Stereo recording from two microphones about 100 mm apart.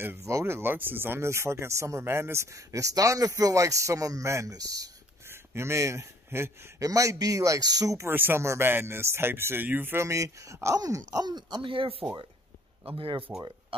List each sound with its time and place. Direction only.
0.0 s speech: 25° right (ahead or behind)
5.3 s a man's voice: 25° right (ahead or behind)
8.1 s speech: 20° right (ahead or behind); by 13.2 s 60° right (ahead or behind)